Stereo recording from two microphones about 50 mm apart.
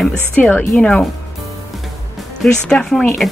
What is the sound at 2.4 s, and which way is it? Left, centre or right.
Speech, centre.